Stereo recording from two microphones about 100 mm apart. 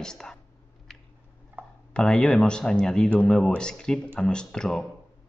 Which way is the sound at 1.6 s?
20° right (ahead or behind).